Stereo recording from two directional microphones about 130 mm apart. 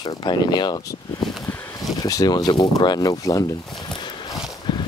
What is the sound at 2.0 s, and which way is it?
Speech, 30° left (ahead or behind).